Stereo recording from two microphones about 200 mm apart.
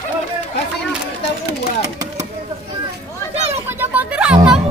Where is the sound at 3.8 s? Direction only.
5° right (ahead or behind).